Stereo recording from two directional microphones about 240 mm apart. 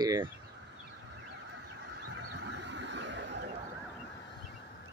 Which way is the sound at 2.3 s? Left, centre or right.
Right.